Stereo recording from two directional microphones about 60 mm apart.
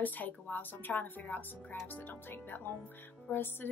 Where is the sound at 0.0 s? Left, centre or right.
Left.